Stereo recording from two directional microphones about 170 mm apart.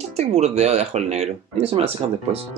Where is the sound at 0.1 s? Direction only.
40° right (ahead or behind).